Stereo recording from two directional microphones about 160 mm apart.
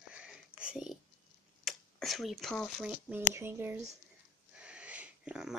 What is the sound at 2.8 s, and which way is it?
Speech, 5° right (ahead or behind).